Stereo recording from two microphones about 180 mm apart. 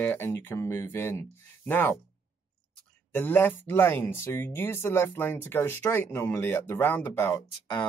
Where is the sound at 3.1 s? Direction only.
10° left (ahead or behind).